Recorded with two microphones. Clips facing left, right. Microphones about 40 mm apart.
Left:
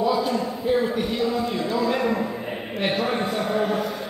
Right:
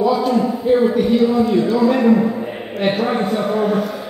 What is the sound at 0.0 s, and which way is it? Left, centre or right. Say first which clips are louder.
A man's voice: right 6 dB; centre.